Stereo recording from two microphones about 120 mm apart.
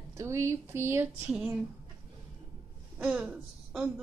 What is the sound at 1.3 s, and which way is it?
Speech, 5° right (ahead or behind).